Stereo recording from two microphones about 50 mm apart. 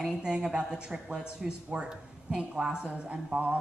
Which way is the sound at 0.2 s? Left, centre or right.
Centre.